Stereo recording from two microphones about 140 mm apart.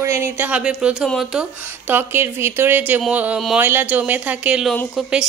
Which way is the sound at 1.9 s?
15° right (ahead or behind).